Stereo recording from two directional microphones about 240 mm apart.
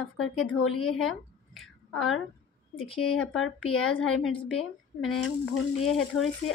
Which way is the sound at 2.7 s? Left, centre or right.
Left.